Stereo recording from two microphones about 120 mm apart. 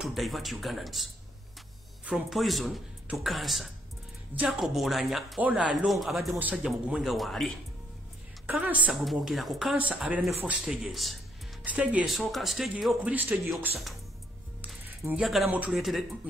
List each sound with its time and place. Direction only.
0.0 s a man's voice: centre (ahead or behind)
8.5 s a man's voice: 15° right (ahead or behind)
8.9 s a man's voice: centre (ahead or behind)
11.6 s a man's voice: 10° right (ahead or behind)
12.1 s speech: centre (ahead or behind)
15.0 s a man's voice: 20° right (ahead or behind)
15.7 s speech: centre (ahead or behind)